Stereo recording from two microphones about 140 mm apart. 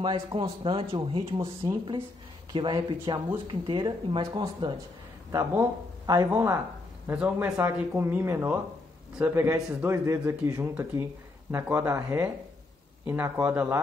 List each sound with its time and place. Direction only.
0.0 s speech: 35° right (ahead or behind)
5.3 s a man's voice: 20° right (ahead or behind)
7.1 s a man's voice: 10° right (ahead or behind)